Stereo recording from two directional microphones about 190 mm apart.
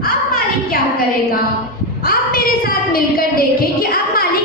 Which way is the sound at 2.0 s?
50° left (ahead or behind).